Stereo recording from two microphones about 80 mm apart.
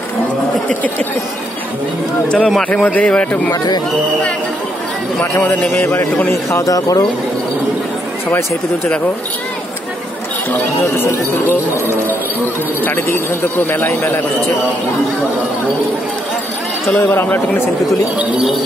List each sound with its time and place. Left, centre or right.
0.7 s speech: centre
2.2 s a man's voice: centre
2.7 s a man's voice: centre
5.8 s speech: left
6.5 s speech: left
12.8 s speech: left
17.0 s speech: left